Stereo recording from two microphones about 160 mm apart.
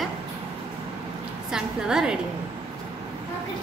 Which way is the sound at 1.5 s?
5° right (ahead or behind).